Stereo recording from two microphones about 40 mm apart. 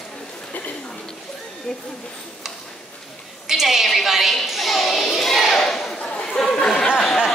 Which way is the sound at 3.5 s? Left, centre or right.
Centre.